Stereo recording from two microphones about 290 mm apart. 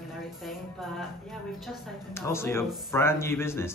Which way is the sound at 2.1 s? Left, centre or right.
Centre.